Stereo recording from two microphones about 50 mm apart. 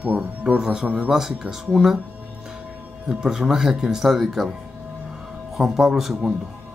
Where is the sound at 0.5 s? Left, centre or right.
Centre.